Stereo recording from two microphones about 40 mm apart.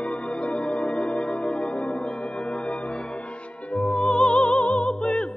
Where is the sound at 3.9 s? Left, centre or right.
Left.